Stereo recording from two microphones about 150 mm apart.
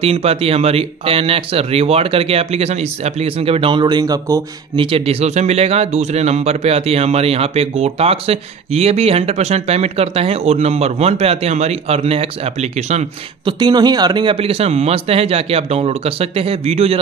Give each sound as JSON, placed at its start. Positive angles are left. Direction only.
{"t": 0.0, "sound": "speech", "side_deg": -40}
{"t": 13.5, "sound": "speech", "side_deg": -30}